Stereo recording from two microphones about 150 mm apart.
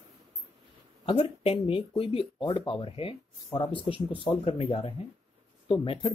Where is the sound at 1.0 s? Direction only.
40° left (ahead or behind).